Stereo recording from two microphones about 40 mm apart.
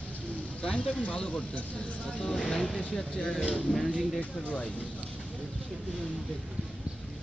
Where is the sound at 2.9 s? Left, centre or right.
Centre.